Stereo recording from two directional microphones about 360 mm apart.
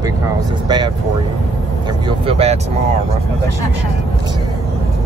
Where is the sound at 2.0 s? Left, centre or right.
Centre.